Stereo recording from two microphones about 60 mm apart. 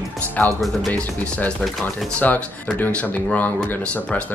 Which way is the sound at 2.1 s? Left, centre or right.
Left.